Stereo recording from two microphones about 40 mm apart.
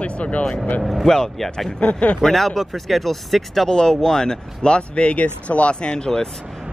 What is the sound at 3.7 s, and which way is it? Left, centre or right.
Speech, centre.